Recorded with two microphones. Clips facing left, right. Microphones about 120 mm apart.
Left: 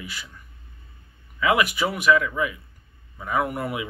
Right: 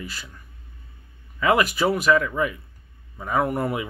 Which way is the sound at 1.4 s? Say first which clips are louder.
Right 2 dB; 40° right (ahead or behind).